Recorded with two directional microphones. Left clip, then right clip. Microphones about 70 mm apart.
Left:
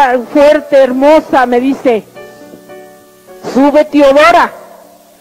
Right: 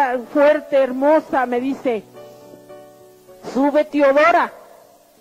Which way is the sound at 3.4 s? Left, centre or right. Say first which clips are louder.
Left 9 dB; right.